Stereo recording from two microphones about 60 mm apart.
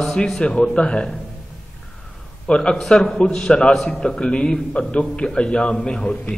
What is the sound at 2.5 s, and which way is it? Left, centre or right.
A man's voice, centre.